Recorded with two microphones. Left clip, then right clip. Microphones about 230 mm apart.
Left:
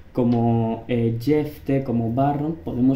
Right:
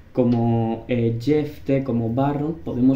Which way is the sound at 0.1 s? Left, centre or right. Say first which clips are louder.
Right 1 dB; centre.